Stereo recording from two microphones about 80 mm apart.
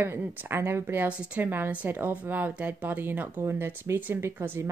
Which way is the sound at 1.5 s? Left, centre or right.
Right.